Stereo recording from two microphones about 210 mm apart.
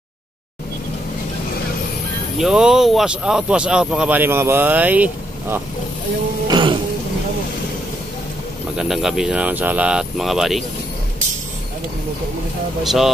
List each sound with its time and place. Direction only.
2.3 s speech: centre (ahead or behind)
6.4 s music: 20° right (ahead or behind)
8.7 s speech: centre (ahead or behind)
12.8 s speech: centre (ahead or behind)